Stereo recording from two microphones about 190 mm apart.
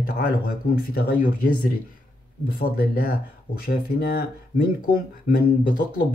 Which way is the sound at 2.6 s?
50° left (ahead or behind).